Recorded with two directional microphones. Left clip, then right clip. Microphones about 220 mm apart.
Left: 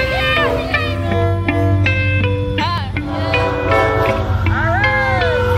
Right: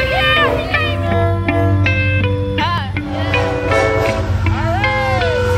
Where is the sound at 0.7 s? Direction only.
15° right (ahead or behind).